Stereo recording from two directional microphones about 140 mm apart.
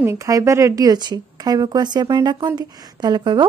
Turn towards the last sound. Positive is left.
turn(degrees=-30)  # may be behind; listen again after turning